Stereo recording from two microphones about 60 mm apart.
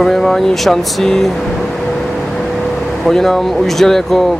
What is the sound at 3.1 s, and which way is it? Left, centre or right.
Speech, centre.